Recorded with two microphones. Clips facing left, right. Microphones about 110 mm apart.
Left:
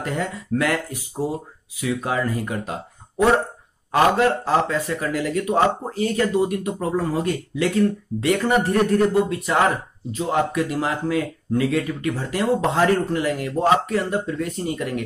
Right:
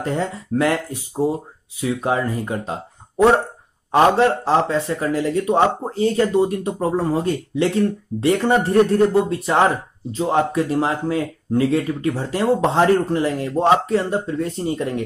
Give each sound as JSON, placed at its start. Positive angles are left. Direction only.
{"t": 0.0, "sound": "speech", "side_deg": -30}